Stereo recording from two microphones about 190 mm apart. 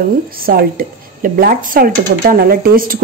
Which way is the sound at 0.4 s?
50° right (ahead or behind).